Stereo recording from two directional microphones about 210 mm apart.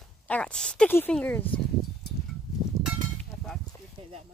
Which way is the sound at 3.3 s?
5° left (ahead or behind).